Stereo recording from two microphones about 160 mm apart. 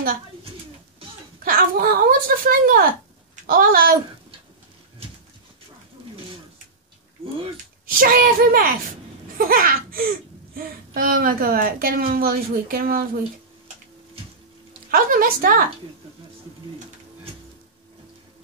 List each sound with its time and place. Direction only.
1.4 s a woman's voice: 65° right (ahead or behind)
7.8 s a woman's voice: 65° right (ahead or behind)
14.9 s a woman's voice: 65° right (ahead or behind)